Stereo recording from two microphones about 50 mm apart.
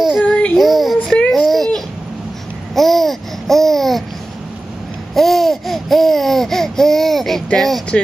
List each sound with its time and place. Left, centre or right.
0.2 s child singing: left
0.6 s child singing: centre
1.3 s a sound: centre
2.7 s babbling: centre
5.1 s laughter: centre
7.5 s speech: centre